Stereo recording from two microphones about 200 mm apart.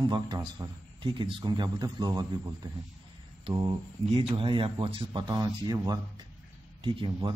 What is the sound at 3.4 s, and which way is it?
Speech, 25° right (ahead or behind).